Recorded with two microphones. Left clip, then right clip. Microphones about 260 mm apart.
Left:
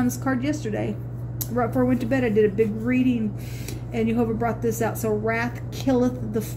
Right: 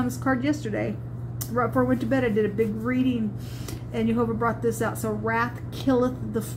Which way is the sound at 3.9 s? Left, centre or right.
Left.